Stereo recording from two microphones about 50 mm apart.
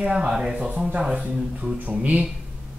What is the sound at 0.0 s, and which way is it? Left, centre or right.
Speech, centre.